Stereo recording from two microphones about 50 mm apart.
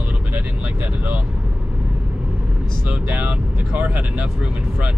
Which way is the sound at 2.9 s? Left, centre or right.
Right.